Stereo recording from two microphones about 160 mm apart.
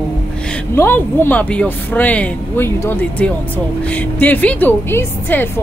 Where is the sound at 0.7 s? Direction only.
15° left (ahead or behind).